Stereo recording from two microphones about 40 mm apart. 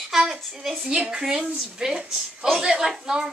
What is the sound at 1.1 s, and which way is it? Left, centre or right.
Speech, centre.